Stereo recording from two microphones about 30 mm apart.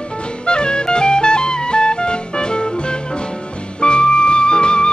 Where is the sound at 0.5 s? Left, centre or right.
Left.